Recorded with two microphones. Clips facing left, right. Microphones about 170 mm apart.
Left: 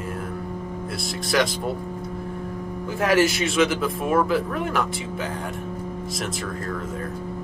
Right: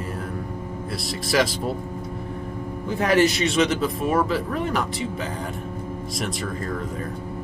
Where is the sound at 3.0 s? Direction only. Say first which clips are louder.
Right 1 dB; centre (ahead or behind).